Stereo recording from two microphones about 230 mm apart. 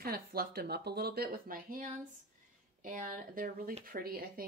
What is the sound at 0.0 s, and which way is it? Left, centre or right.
Speech, right.